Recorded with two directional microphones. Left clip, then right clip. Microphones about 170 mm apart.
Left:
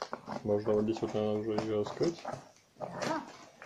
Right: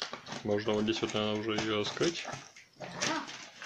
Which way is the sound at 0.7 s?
Centre (ahead or behind).